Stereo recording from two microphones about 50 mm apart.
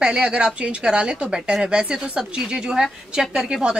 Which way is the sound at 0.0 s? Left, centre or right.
Centre.